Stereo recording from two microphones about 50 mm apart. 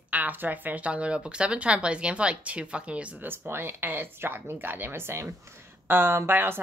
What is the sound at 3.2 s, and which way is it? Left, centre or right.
A woman's voice, right.